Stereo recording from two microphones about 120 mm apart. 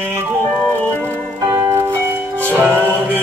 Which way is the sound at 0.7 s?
15° left (ahead or behind).